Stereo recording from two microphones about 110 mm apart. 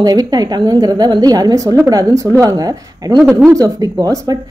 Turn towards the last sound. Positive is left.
turn(degrees=-35)  # may be behind; listen again after turning